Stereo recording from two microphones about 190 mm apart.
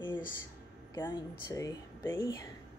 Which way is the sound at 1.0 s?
25° left (ahead or behind).